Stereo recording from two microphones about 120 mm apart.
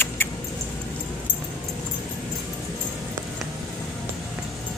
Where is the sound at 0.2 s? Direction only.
20° left (ahead or behind).